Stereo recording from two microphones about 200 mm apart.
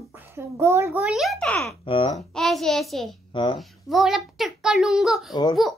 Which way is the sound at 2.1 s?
Centre (ahead or behind).